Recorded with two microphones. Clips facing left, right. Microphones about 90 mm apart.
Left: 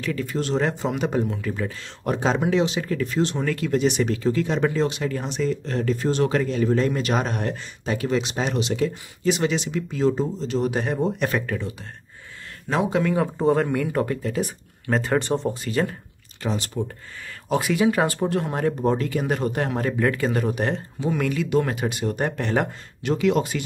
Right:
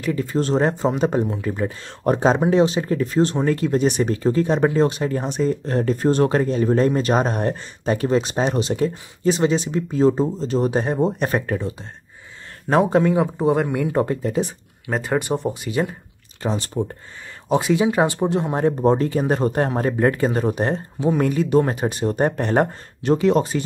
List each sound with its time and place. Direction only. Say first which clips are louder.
0.1 s speech: right 5 dB; 30° right (ahead or behind)
1.2 s speech: right 3 dB; 25° right (ahead or behind)
12.6 s speech: right 6 dB; 45° right (ahead or behind)
13.0 s speech: right 3 dB; 15° right (ahead or behind)
14.9 s speech: even; 10° right (ahead or behind)
16.4 s speech: right 3 dB; 30° right (ahead or behind)